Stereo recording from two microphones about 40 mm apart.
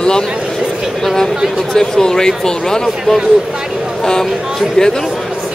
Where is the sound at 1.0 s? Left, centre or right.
Centre.